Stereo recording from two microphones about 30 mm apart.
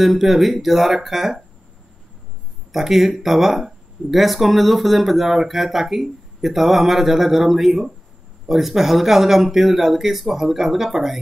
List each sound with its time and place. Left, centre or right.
0.0 s speech: centre
2.7 s speech: centre